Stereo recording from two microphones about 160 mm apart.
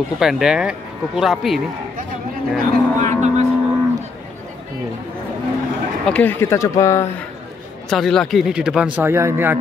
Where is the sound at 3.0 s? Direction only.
50° right (ahead or behind).